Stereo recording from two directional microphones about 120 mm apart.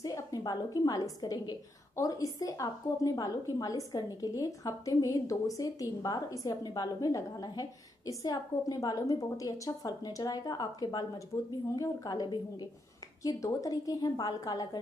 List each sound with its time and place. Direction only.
0.0 s a woman's voice: 30° left (ahead or behind)